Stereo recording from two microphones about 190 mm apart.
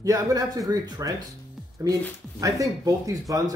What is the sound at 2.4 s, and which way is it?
Speech, 15° right (ahead or behind).